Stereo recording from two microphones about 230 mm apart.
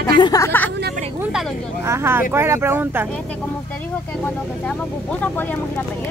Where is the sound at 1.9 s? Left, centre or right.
Centre.